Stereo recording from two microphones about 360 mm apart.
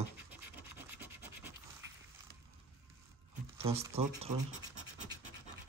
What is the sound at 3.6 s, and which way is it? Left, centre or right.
Speech, centre.